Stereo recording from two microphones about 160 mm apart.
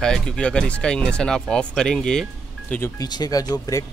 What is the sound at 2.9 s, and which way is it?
Speech, 25° left (ahead or behind).